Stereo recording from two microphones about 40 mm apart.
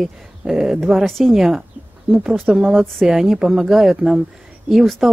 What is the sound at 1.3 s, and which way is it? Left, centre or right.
Speech, centre.